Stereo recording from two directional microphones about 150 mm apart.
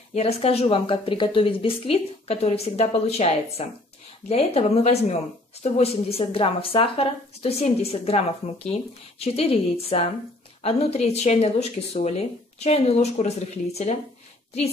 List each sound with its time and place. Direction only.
0.1 s a woman's voice: 45° left (ahead or behind)